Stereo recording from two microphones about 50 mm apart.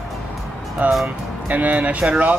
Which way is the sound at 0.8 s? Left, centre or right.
Right.